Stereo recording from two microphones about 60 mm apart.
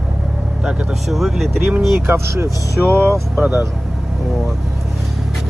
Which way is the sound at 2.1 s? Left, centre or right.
Right.